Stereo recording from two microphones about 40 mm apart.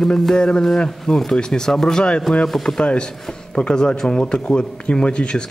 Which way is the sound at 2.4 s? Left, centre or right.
Centre.